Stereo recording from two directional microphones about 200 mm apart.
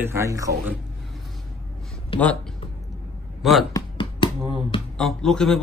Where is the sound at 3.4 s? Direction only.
Centre (ahead or behind).